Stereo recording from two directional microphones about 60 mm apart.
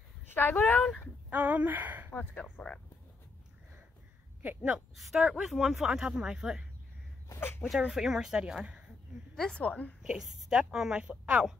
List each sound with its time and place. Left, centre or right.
0.3 s speech: left
1.3 s speech: right
2.1 s speech: left
4.6 s speech: centre
7.3 s speech: left
7.9 s speech: centre
9.3 s a woman's voice: centre
9.7 s a woman's voice: left
10.1 s speech: centre